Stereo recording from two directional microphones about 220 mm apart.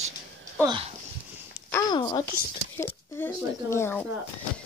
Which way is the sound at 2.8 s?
10° left (ahead or behind).